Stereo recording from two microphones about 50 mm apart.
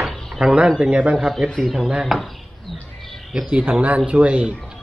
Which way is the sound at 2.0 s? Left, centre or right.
Centre.